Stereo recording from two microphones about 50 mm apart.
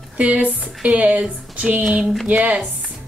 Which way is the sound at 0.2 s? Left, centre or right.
Right.